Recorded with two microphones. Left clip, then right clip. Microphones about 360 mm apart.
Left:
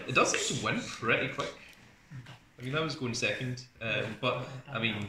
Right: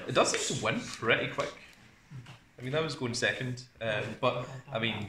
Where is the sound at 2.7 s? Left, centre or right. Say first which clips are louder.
Right 1 dB; right.